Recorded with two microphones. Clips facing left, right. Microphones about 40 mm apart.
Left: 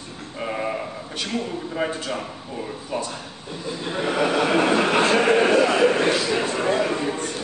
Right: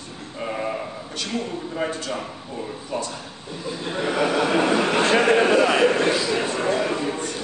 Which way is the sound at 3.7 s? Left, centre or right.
Centre.